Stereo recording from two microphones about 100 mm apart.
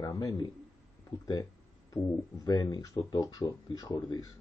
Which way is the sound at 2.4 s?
45° left (ahead or behind).